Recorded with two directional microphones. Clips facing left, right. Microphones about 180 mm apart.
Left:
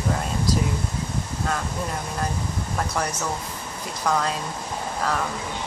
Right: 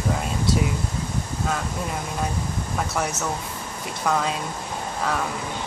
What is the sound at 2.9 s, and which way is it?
Speech, 5° right (ahead or behind).